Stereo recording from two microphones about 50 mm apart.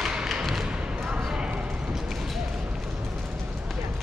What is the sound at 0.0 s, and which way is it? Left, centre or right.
Thump, centre.